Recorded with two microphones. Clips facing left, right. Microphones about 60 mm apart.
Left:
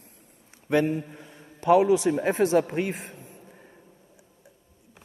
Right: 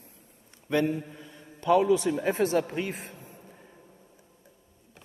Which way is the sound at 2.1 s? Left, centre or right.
Left.